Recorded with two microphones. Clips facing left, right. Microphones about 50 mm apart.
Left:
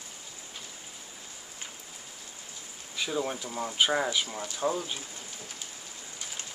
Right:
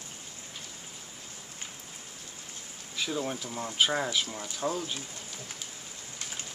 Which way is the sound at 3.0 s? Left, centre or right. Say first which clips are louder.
Left 1 dB; centre.